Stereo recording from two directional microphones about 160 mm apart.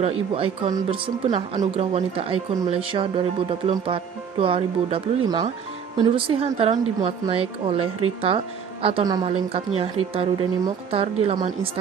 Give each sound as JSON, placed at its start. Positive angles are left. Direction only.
{"t": 0.0, "sound": "speech", "side_deg": -35}